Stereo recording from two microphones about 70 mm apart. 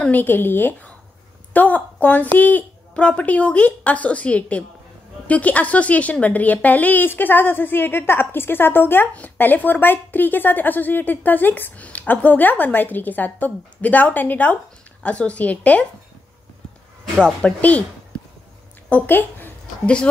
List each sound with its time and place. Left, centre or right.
0.0 s a woman's voice: left
17.2 s speech: centre
18.9 s a woman's voice: left